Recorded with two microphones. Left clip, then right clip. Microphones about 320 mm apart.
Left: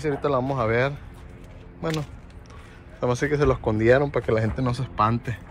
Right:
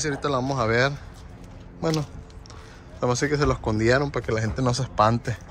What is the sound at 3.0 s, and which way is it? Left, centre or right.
A man's voice, centre.